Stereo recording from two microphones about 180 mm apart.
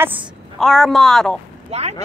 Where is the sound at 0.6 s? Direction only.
Centre (ahead or behind).